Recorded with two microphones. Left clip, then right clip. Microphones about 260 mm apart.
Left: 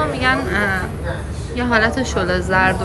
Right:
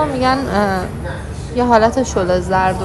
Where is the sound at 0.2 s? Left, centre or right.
Centre.